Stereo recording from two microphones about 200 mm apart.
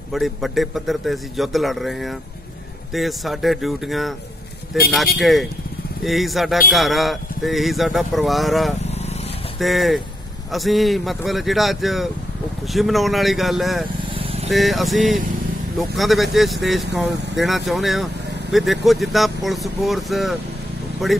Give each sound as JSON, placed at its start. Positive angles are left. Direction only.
{"t": 0.1, "sound": "speech", "side_deg": 0}
{"t": 14.1, "sound": "vehicle", "side_deg": -30}
{"t": 14.5, "sound": "speech", "side_deg": 0}